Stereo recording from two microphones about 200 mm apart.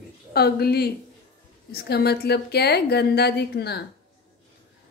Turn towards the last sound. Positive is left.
turn(degrees=55)  # may be behind; listen again after turning